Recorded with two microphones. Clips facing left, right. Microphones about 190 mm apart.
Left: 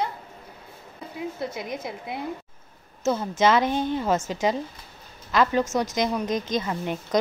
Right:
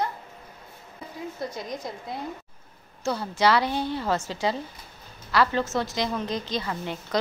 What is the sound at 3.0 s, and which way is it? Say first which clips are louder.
A woman's voice: left 2 dB; 20° left (ahead or behind).